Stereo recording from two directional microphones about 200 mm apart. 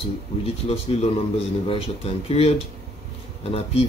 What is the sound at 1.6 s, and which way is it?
Speech, 30° left (ahead or behind).